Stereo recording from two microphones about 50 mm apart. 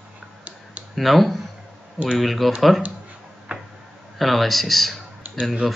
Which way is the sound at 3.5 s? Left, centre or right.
Right.